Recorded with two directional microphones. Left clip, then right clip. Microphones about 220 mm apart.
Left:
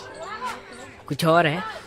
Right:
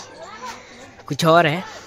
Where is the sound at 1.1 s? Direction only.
20° right (ahead or behind).